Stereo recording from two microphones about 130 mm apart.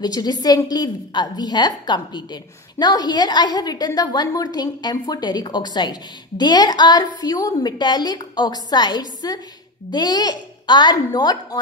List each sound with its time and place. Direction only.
0.0 s a woman's voice: 30° left (ahead or behind)